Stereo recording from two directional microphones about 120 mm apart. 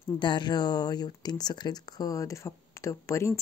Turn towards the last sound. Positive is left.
turn(degrees=25)  # may be behind; listen again after turning